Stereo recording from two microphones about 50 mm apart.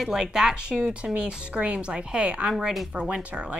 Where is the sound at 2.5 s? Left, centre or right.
Centre.